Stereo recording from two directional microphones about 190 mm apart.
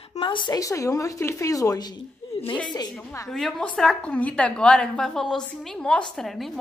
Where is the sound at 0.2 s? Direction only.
25° left (ahead or behind).